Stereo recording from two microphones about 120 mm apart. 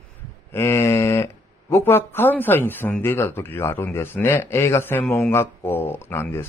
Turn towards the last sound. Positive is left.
turn(degrees=20)  # may be behind; listen again after turning